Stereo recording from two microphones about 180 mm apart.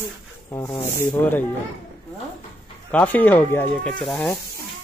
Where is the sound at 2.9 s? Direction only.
10° left (ahead or behind).